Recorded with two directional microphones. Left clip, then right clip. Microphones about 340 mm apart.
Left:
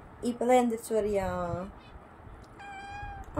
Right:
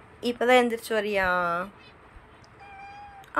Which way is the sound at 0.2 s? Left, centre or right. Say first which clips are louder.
Right 4 dB; centre.